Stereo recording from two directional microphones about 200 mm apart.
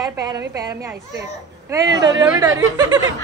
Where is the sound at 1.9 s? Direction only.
70° right (ahead or behind).